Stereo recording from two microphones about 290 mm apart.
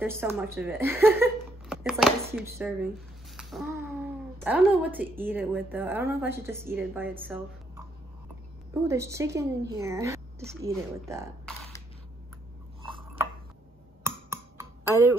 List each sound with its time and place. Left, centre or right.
0.0 s a woman's voice: centre
8.8 s a woman's voice: centre
12.8 s dishes: centre
14.0 s music: centre